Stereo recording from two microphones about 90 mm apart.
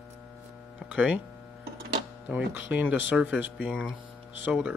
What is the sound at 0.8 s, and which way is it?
Music, 10° right (ahead or behind).